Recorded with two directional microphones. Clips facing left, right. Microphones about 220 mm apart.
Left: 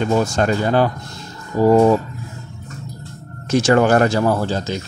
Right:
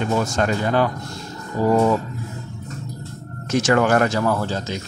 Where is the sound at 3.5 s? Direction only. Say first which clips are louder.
Left 3 dB; 30° left (ahead or behind).